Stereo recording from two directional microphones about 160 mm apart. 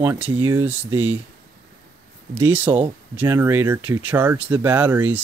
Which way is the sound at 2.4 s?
10° right (ahead or behind).